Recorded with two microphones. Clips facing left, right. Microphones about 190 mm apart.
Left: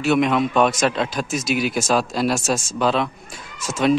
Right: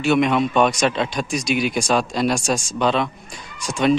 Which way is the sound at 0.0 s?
Centre (ahead or behind).